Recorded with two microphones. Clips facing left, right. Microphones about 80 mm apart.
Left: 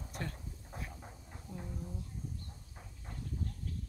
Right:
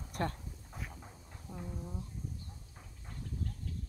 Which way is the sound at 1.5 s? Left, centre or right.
Right.